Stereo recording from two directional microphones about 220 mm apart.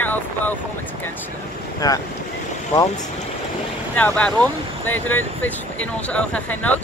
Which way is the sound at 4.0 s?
5° left (ahead or behind).